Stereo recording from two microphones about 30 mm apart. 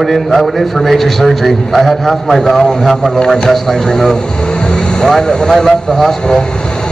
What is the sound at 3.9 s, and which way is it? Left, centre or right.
Speech, left.